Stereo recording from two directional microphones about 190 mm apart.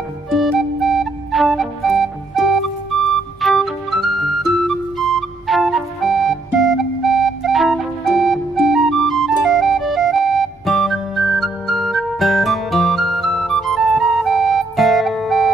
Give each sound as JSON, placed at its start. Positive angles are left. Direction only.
{"t": 0.3, "sound": "flute", "side_deg": 0}
{"t": 7.4, "sound": "music", "side_deg": 0}